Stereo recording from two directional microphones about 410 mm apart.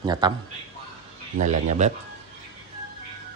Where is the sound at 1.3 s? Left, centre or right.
Centre.